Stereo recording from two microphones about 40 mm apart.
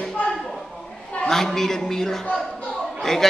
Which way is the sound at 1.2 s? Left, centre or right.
Centre.